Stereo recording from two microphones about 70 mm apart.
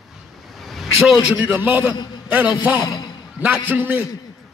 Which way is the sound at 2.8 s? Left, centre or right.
Left.